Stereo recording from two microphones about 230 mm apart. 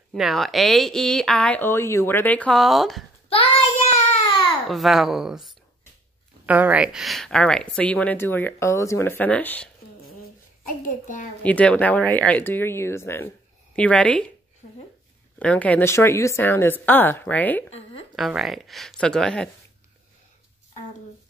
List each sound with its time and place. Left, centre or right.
0.1 s speech: centre
3.3 s child singing: left
4.6 s speech: centre
11.4 s speech: centre
15.3 s speech: centre